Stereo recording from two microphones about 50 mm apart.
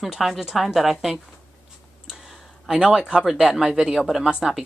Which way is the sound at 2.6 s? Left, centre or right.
Centre.